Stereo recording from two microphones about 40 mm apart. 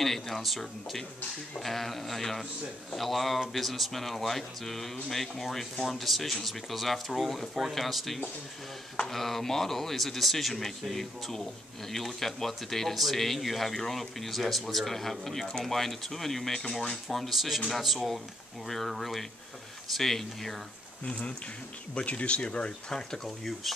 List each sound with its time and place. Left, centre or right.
0.0 s speech: centre
21.0 s speech: left
22.5 s speech: centre